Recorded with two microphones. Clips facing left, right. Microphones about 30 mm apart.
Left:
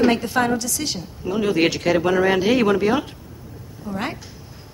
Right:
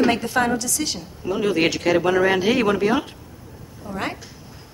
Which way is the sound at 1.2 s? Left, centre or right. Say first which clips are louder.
Left 1 dB; centre.